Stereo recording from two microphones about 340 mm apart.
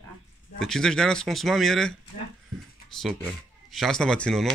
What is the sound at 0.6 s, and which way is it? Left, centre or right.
Speech, centre.